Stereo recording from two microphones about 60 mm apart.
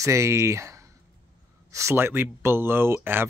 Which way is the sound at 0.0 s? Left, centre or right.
Right.